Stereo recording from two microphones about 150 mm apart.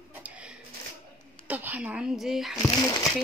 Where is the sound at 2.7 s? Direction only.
25° left (ahead or behind).